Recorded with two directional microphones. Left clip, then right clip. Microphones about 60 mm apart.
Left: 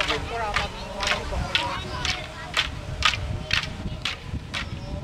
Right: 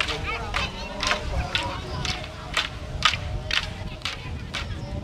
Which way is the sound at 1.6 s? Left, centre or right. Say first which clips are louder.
Left 2 dB; left.